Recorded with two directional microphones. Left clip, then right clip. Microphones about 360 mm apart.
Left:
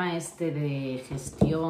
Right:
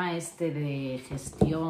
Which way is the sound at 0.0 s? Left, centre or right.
Centre.